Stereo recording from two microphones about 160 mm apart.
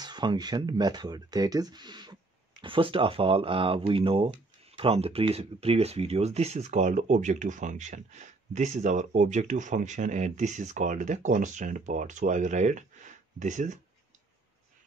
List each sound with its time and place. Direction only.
0.0 s speech: 30° right (ahead or behind); by 13.7 s 50° right (ahead or behind)